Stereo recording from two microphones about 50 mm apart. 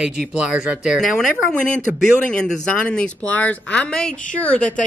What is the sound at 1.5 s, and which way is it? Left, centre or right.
Speech, centre.